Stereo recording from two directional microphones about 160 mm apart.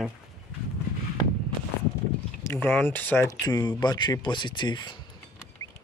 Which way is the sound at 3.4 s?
25° left (ahead or behind).